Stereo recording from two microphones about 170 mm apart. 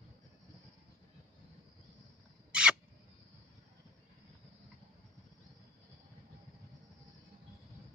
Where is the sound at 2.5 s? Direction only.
5° right (ahead or behind).